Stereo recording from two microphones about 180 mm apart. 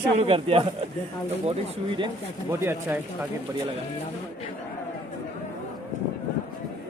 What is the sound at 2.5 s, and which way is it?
Speech, 15° right (ahead or behind).